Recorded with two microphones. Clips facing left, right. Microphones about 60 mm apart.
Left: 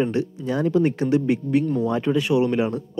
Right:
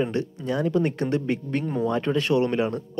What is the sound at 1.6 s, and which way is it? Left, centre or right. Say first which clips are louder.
Speech: left 3 dB; right.